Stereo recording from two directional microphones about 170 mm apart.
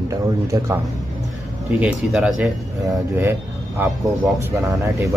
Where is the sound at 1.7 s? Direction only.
5° right (ahead or behind).